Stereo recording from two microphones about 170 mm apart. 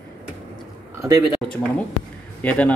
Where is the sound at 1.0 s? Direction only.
20° right (ahead or behind).